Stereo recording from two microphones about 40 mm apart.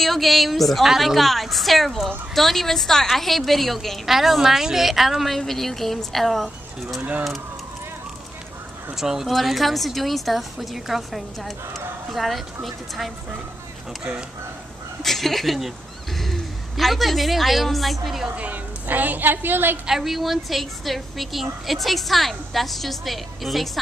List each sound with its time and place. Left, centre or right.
0.0 s a woman's voice: centre
7.0 s speech: right
8.9 s a woman's voice: centre
15.0 s a woman's voice: centre
18.3 s speech: right
18.9 s a woman's voice: right
19.9 s a woman's voice: centre